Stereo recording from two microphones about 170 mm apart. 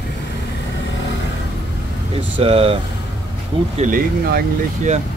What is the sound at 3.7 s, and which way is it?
Speech, 50° right (ahead or behind).